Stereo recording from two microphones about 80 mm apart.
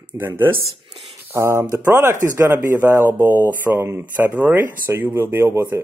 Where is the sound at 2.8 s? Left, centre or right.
Right.